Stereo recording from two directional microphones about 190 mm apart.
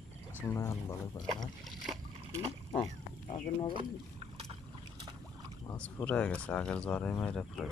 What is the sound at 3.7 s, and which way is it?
Boat, 30° right (ahead or behind).